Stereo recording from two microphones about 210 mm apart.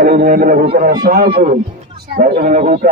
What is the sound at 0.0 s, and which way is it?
A man's voice, 45° right (ahead or behind).